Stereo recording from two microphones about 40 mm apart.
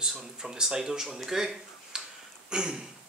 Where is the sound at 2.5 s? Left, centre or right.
Centre.